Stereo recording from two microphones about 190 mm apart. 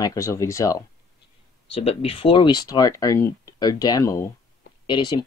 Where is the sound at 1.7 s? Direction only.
30° left (ahead or behind).